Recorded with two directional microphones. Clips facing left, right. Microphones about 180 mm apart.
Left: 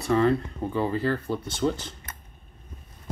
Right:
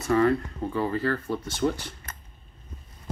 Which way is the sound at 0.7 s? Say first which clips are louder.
Left 1 dB; 20° left (ahead or behind).